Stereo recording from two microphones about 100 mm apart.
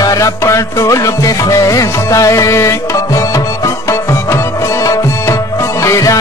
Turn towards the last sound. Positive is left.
turn(degrees=35)  # may be behind; listen again after turning